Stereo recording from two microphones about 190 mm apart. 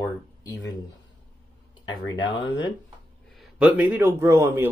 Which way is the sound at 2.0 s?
80° left.